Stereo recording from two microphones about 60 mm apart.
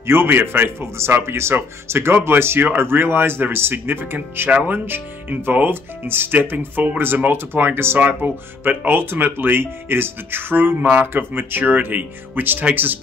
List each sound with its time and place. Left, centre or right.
0.0 s speech: right
4.5 s speech: right
4.8 s speech: right